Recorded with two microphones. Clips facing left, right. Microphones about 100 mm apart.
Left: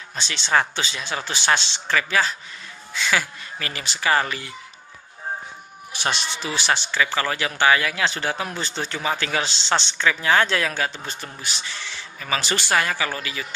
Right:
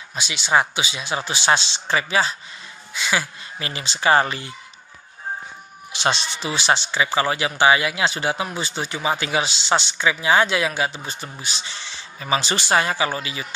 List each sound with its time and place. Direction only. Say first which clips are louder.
0.1 s a man's voice: right 2 dB; 10° right (ahead or behind); by 4.5 s 25° right (ahead or behind)
6.4 s a man's voice: right 4 dB; 20° right (ahead or behind)